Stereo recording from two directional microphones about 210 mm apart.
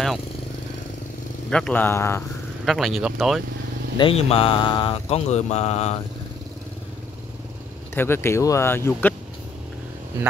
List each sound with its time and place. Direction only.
1.5 s speech: 5° left (ahead or behind)
2.6 s speech: centre (ahead or behind)
4.0 s a sound: 25° left (ahead or behind)
7.9 s speech: 10° left (ahead or behind)